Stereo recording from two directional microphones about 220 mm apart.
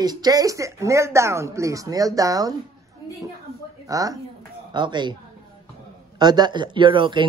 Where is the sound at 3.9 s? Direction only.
15° right (ahead or behind).